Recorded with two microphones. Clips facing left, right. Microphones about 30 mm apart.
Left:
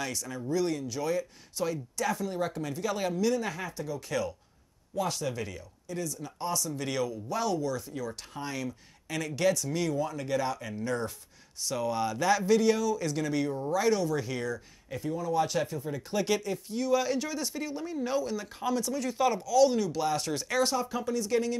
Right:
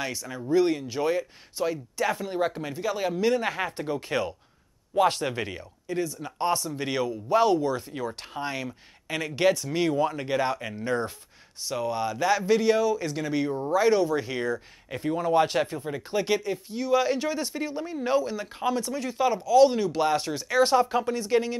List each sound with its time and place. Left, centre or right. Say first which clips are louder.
0.0 s a man's voice: right 2 dB; right
3.2 s a man's voice: right 4 dB; right
11.6 s a man's voice: right 2 dB; centre; by 16.0 s right
16.1 s a man's voice: right 3 dB; centre
19.4 s a man's voice: right 7 dB; right
20.3 s speech: right 5 dB; centre
20.6 s speech: right 8 dB; right